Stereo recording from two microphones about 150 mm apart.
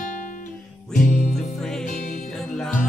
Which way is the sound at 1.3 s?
5° left (ahead or behind).